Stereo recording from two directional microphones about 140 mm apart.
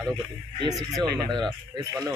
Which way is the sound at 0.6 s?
25° right (ahead or behind).